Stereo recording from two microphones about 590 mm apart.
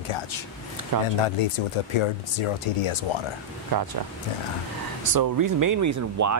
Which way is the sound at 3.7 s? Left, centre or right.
Right.